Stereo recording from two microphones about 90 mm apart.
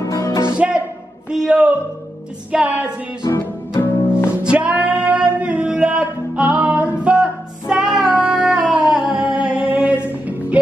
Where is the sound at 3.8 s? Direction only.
25° left (ahead or behind).